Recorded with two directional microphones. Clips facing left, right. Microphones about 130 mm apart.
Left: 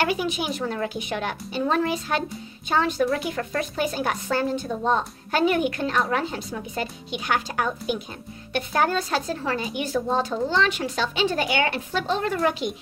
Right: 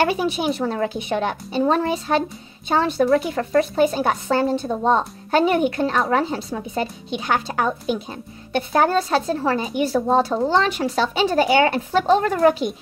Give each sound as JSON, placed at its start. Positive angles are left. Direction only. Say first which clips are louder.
{"t": 0.1, "sound": "speech", "louder": "right 4 dB", "side_deg": -30}